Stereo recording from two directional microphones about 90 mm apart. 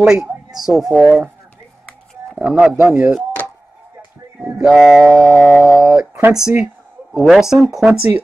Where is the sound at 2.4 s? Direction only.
10° right (ahead or behind).